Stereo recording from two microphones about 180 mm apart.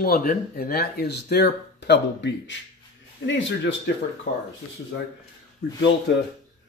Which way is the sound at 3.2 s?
90° left.